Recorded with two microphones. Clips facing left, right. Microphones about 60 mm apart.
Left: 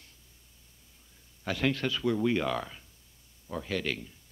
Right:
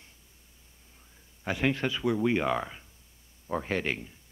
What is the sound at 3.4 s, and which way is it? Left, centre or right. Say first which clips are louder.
Speech: right 3 dB; right.